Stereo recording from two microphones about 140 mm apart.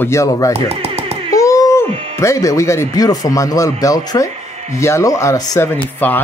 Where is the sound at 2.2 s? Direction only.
20° left (ahead or behind).